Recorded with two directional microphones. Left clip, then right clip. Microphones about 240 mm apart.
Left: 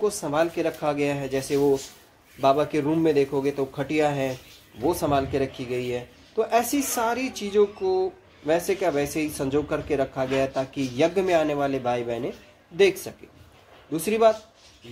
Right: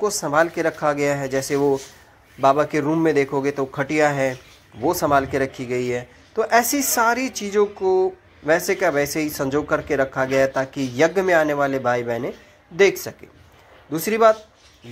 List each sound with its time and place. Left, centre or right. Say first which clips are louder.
0.0 s speech: right 5 dB; right
7.8 s speech: right 5 dB; right
8.5 s speech: right 4 dB; centre
8.8 s speech: right 5 dB; centre